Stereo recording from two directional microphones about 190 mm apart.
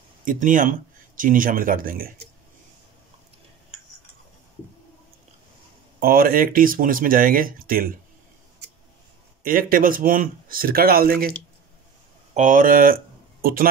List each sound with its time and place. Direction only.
0.2 s speech: 45° right (ahead or behind)
5.9 s speech: 50° right (ahead or behind)
9.4 s speech: 50° right (ahead or behind)
12.4 s speech: 45° right (ahead or behind)